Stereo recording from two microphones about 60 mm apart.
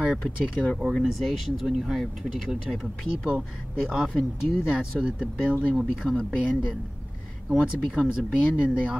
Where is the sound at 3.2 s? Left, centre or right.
Right.